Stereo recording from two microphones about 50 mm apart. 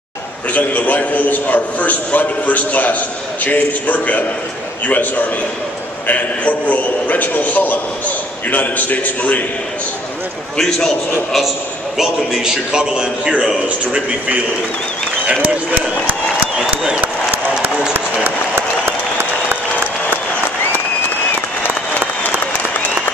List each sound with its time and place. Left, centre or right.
0.5 s a man's voice: left
12.0 s a man's voice: centre
13.7 s a man's voice: right
16.5 s a sound: centre
22.5 s applause: left